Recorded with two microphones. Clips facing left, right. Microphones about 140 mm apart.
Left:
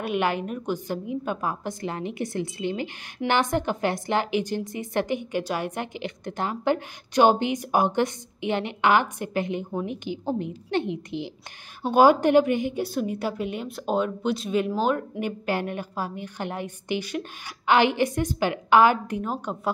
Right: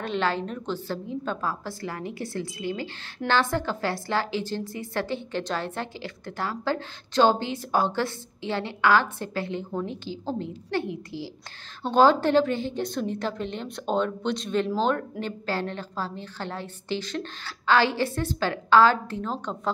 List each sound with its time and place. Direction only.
0.0 s a woman's voice: 15° left (ahead or behind)